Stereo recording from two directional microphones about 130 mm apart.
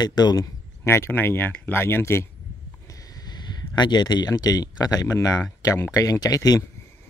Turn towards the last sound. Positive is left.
turn(degrees=30)  # may be behind; listen again after turning